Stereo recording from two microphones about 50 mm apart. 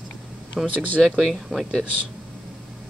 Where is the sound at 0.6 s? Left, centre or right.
Right.